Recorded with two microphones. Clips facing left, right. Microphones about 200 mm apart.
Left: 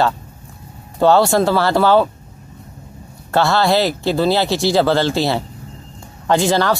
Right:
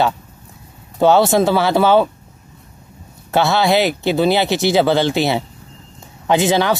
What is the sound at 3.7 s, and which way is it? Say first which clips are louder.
Speech: right 1 dB; 20° right (ahead or behind).